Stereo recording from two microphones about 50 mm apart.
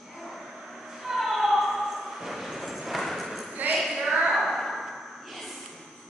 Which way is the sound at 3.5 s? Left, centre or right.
Right.